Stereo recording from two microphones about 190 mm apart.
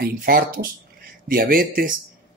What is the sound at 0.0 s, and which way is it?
Speech, 50° right (ahead or behind).